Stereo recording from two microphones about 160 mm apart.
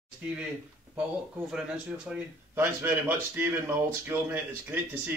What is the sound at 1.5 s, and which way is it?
Speech, 5° right (ahead or behind).